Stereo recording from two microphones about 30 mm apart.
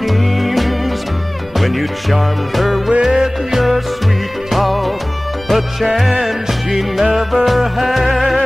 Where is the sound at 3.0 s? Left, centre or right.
Centre.